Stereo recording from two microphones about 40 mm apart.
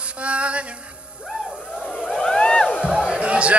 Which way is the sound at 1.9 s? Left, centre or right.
Centre.